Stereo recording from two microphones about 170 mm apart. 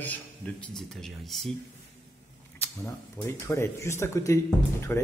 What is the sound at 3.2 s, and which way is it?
Speech, 15° left (ahead or behind).